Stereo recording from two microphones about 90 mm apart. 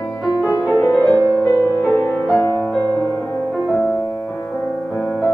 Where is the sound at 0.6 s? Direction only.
30° left (ahead or behind).